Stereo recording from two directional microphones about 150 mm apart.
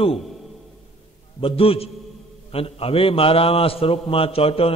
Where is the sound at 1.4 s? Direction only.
40° left (ahead or behind).